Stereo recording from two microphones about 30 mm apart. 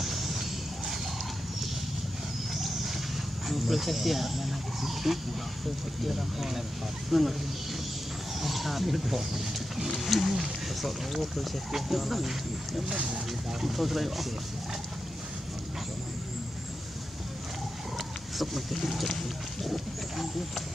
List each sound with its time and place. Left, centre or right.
0.0 s a sound: centre
2.5 s vehicle: centre
3.4 s speech: centre
8.4 s speech: centre
10.3 s speech: centre
10.9 s speech: centre
12.9 s speech: right
13.6 s speech: centre
17.9 s speech: centre